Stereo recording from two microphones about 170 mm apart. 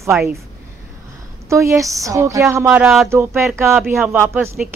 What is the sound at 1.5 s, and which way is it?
Speech, 15° right (ahead or behind).